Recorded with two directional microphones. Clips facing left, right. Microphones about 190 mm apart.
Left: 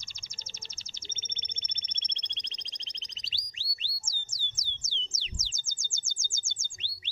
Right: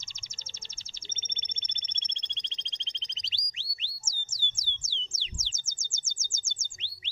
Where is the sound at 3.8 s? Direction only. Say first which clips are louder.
Right 1 dB; 25° right (ahead or behind).